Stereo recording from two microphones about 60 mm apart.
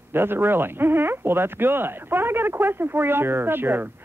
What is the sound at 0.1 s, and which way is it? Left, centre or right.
Speech, right.